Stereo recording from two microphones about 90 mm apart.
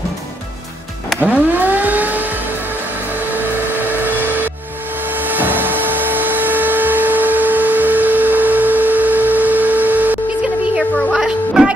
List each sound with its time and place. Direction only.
1.2 s vehicle: 20° right (ahead or behind)
3.3 s a sound: 20° right (ahead or behind)
11.1 s music: 10° right (ahead or behind)